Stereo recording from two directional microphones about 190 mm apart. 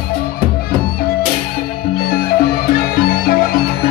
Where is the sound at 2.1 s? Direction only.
55° left (ahead or behind).